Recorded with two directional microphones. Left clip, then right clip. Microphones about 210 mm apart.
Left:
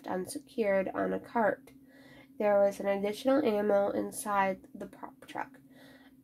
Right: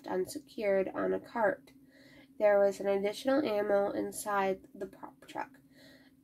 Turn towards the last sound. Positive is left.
turn(degrees=25)  # may be behind; listen again after turning